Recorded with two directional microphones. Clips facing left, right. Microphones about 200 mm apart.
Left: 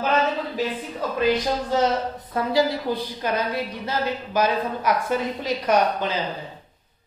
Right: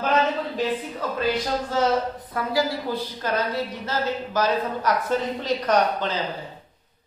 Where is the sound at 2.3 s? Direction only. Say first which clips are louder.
Left 3 dB; 20° left (ahead or behind).